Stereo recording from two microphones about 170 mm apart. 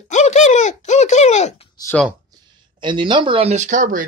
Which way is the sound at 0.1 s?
40° left (ahead or behind).